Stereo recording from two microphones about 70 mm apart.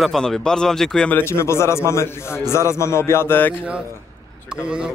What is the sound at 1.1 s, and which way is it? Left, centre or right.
A man's voice, left.